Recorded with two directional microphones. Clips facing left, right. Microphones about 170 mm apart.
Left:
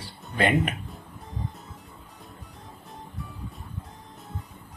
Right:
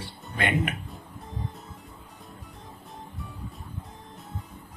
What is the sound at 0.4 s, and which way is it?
Speech, 35° left (ahead or behind).